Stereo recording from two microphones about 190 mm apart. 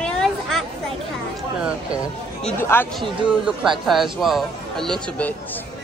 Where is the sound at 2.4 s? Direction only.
10° left (ahead or behind).